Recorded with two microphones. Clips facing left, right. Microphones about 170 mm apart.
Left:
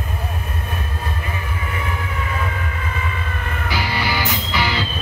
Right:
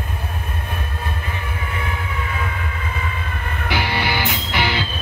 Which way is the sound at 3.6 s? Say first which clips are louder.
Right 1 dB; 60° right (ahead or behind).